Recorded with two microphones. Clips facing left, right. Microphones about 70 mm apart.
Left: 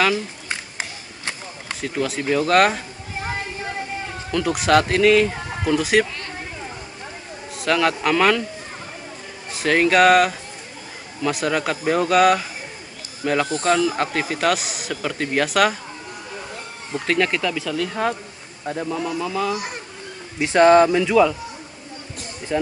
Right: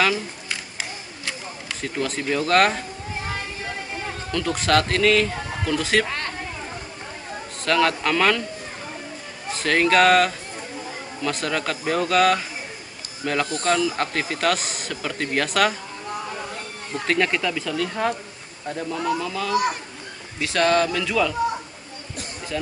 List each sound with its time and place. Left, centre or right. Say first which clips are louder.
0.5 s a sound: left 2 dB; left
1.8 s speech: left 3 dB; centre
4.3 s speech: left 4 dB; centre
6.0 s a sound: right 5 dB; right
7.6 s speech: left 1 dB; centre
9.5 s speech: left 2 dB; centre
17.0 s speech: left 1 dB; centre
18.7 s speech: even; centre
20.3 s speech: left 7 dB; left
22.5 s speech: left 6 dB; left